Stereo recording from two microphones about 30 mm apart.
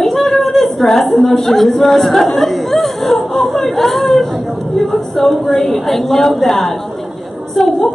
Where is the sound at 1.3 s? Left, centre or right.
Centre.